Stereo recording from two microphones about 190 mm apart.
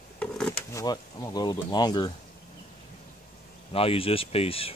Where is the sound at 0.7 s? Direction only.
20° left (ahead or behind).